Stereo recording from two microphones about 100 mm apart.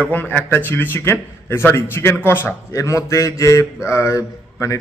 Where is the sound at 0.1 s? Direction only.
15° left (ahead or behind).